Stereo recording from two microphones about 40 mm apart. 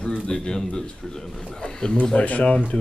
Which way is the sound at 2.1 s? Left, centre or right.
Left.